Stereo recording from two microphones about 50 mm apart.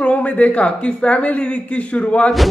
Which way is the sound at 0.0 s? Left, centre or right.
Left.